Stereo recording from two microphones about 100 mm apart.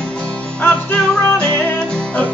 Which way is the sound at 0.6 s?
15° left (ahead or behind).